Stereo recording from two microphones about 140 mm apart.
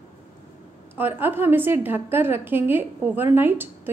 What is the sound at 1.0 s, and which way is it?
A woman's voice, 15° right (ahead or behind).